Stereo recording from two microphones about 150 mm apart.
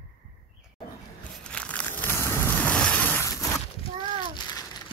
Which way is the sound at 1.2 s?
10° left (ahead or behind).